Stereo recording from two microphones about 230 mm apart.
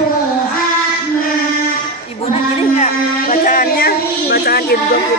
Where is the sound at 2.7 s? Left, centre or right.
Left.